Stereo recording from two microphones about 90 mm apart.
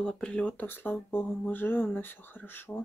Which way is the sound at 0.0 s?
10° left (ahead or behind).